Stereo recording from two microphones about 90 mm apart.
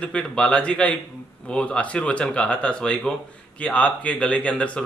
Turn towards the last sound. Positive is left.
turn(degrees=15)  # may be behind; listen again after turning